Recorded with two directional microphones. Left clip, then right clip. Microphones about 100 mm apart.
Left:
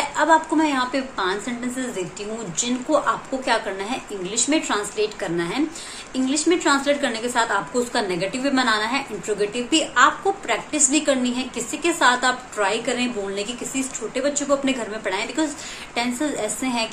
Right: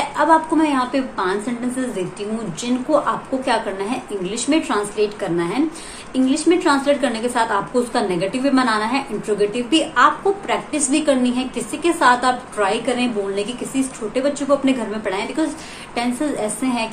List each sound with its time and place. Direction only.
0.2 s a woman's voice: 15° left (ahead or behind)
2.9 s a woman's voice: 15° left (ahead or behind)